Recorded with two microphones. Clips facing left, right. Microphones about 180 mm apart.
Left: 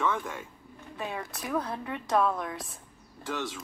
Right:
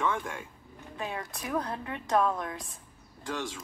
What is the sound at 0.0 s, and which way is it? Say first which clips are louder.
Speech: left 1 dB; 15° right (ahead or behind).